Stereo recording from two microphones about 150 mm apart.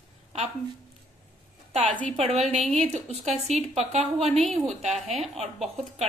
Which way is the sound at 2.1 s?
45° right (ahead or behind).